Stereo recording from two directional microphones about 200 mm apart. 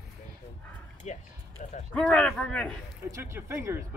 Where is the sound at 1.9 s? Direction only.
5° left (ahead or behind).